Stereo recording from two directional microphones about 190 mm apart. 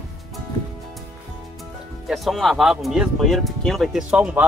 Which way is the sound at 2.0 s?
Centre (ahead or behind).